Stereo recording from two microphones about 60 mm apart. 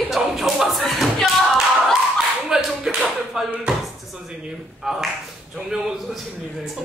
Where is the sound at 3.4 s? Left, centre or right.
Centre.